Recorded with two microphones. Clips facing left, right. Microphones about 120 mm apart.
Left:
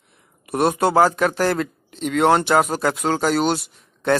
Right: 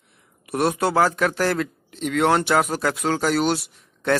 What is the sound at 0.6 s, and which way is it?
Speech, 20° left (ahead or behind).